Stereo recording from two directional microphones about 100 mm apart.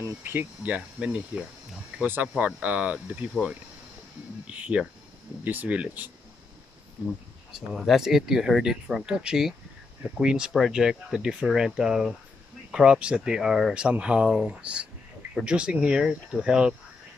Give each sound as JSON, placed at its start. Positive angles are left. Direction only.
{"t": 0.2, "sound": "speech", "side_deg": -20}
{"t": 4.5, "sound": "speech", "side_deg": -10}
{"t": 7.7, "sound": "speech", "side_deg": -5}